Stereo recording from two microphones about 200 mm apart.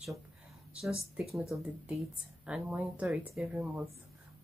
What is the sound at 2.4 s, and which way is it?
Speech, 5° right (ahead or behind).